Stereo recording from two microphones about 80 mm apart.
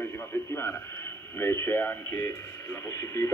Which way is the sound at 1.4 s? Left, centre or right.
Left.